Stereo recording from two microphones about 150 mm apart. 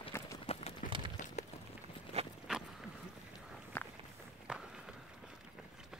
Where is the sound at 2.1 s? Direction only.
45° right (ahead or behind).